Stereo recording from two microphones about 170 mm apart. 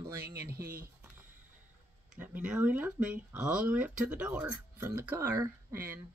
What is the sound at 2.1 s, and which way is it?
Speech, 5° right (ahead or behind).